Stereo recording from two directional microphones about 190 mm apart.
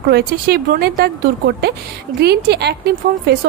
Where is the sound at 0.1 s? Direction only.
55° right (ahead or behind).